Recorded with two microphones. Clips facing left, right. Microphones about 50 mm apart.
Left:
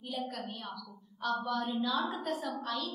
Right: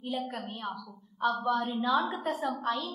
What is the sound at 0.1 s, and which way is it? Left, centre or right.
Speech, right.